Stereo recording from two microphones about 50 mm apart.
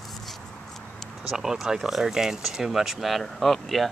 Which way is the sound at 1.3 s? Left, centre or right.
Centre.